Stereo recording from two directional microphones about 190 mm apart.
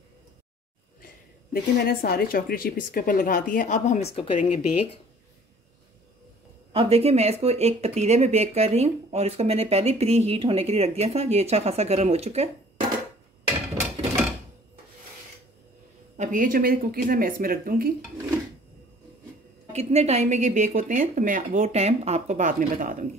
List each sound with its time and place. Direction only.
1.0 s a woman's voice: 50° left (ahead or behind); by 4.7 s 35° left (ahead or behind)
6.7 s speech: 30° right (ahead or behind)
16.2 s speech: 45° right (ahead or behind)
19.7 s speech: 35° right (ahead or behind)